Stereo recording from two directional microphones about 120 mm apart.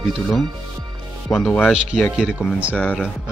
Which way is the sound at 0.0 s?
Centre (ahead or behind).